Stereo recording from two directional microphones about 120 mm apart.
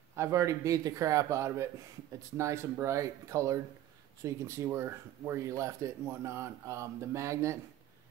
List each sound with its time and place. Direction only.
0.1 s speech: 25° right (ahead or behind)